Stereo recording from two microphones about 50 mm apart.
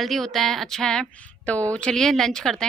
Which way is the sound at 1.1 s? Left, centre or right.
Left.